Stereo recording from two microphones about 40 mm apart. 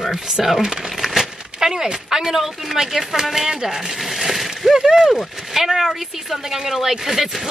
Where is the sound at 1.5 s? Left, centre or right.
Centre.